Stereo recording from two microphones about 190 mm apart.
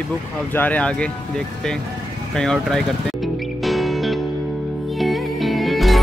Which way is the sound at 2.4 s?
5° left (ahead or behind).